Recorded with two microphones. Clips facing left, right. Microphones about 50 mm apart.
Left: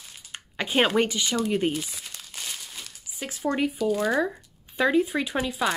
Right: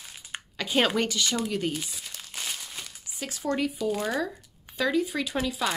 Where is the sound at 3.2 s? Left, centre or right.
Centre.